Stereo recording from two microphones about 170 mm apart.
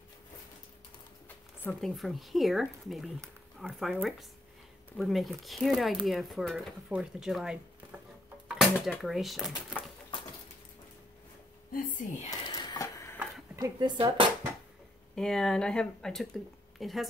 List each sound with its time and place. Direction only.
1.6 s speech: 5° left (ahead or behind)
11.7 s a woman's voice: 50° left (ahead or behind)
12.3 s a sound: 25° left (ahead or behind)
13.6 s speech: 25° right (ahead or behind)
15.1 s speech: 5° left (ahead or behind)